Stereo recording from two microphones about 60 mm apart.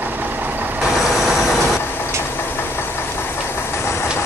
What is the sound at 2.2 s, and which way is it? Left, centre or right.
Engine knocking, left.